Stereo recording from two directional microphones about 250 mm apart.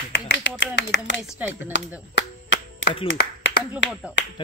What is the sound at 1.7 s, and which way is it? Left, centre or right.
Speech, left.